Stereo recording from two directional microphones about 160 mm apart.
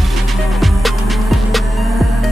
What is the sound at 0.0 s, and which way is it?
Music, centre (ahead or behind).